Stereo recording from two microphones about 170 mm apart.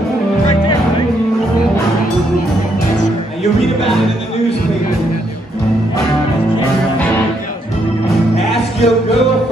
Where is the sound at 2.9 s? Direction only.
45° left (ahead or behind).